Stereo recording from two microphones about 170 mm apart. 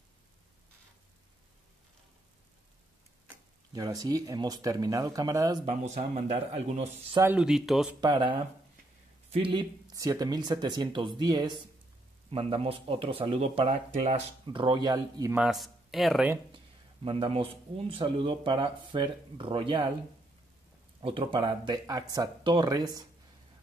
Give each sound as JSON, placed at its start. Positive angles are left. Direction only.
{"t": 3.7, "sound": "speech", "side_deg": -20}
{"t": 5.7, "sound": "speech", "side_deg": -40}
{"t": 7.3, "sound": "speech", "side_deg": -5}
{"t": 8.0, "sound": "speech", "side_deg": -25}
{"t": 15.3, "sound": "speech", "side_deg": 0}
{"t": 16.5, "sound": "speech", "side_deg": -30}
{"t": 21.0, "sound": "speech", "side_deg": -30}